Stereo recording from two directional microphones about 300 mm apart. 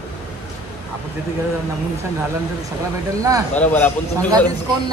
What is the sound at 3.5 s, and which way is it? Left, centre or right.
Speech, centre.